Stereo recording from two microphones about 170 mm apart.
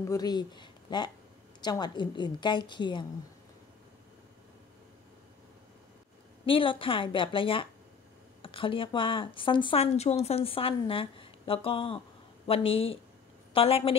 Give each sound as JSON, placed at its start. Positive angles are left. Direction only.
{"t": 0.1, "sound": "a woman's voice", "side_deg": 25}
{"t": 6.4, "sound": "a woman's voice", "side_deg": 30}